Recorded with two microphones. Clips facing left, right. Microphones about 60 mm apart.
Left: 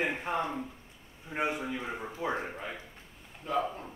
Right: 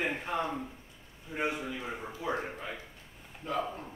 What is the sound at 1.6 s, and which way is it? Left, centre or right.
Speech, centre.